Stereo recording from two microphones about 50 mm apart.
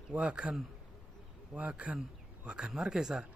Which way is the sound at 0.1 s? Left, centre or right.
Right.